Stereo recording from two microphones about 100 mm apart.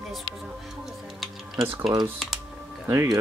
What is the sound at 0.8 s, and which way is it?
Tick-tock, centre (ahead or behind).